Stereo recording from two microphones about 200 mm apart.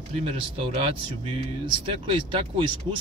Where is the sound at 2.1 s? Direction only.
25° right (ahead or behind).